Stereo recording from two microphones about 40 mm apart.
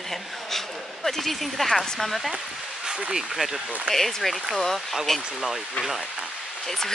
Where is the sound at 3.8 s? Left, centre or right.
Centre.